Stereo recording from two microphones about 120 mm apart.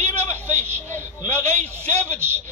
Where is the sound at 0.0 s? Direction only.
15° left (ahead or behind).